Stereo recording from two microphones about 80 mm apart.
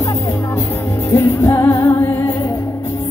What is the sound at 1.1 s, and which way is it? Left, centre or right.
Music, left.